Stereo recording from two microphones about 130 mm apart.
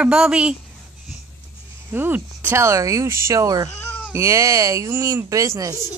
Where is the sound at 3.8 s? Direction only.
15° left (ahead or behind).